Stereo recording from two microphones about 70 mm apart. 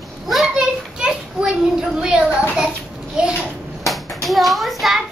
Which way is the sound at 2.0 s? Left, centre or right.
Centre.